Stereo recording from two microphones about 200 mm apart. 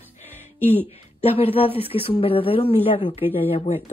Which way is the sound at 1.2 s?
30° left (ahead or behind).